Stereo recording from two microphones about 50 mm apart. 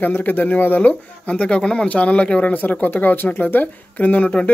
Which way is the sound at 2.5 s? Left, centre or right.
Left.